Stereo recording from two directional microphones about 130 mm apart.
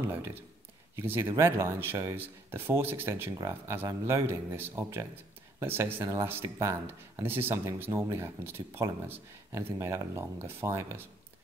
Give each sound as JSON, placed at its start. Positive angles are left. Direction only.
{"t": 0.1, "sound": "speech", "side_deg": -15}